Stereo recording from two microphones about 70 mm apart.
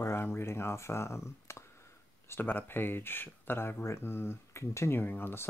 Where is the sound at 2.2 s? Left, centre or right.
Left.